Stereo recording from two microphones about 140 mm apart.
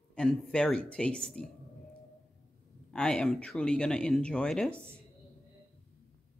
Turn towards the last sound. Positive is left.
turn(degrees=-15)  # may be behind; listen again after turning